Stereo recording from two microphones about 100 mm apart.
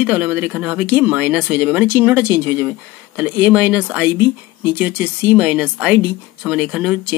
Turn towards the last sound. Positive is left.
turn(degrees=-5)  # may be behind; listen again after turning